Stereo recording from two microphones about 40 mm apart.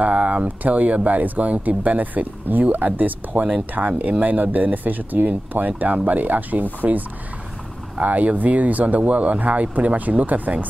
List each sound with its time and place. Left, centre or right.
0.0 s speech: right